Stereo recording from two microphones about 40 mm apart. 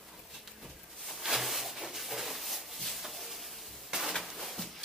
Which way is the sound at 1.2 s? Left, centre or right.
Centre.